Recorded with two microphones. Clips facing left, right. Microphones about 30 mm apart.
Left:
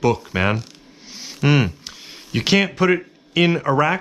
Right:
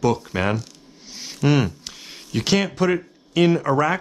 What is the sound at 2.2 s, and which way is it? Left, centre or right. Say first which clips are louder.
Speech: left 3 dB; centre.